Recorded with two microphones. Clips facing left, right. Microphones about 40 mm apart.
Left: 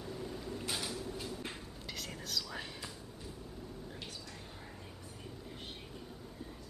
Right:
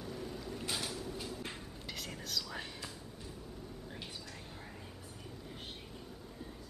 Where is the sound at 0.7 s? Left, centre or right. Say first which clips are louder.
Even; centre.